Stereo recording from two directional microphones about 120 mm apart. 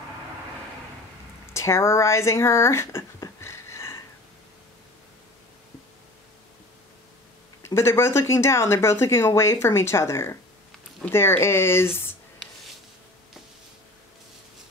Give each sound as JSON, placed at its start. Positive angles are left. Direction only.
{"t": 1.5, "sound": "speech", "side_deg": 25}
{"t": 7.7, "sound": "speech", "side_deg": 20}